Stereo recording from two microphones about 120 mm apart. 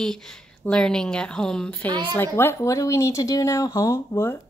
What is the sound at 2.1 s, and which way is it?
Speech, 20° left (ahead or behind).